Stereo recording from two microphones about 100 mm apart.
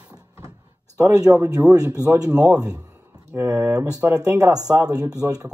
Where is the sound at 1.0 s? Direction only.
35° right (ahead or behind).